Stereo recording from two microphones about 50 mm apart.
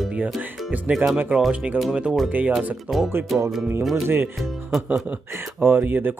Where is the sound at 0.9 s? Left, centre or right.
Right.